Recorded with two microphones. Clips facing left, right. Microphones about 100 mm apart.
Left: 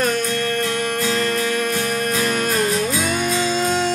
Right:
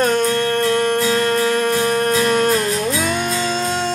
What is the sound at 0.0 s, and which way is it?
Music, 40° right (ahead or behind).